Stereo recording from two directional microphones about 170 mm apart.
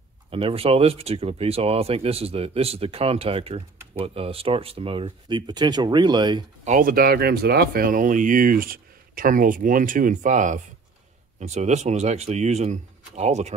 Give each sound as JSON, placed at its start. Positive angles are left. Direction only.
{"t": 0.3, "sound": "speech", "side_deg": -35}
{"t": 6.6, "sound": "speech", "side_deg": -50}